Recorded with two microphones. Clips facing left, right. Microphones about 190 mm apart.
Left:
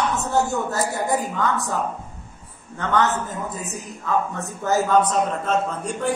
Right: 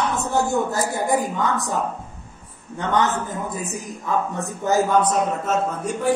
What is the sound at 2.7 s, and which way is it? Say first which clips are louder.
A woman's voice: even; 15° right (ahead or behind).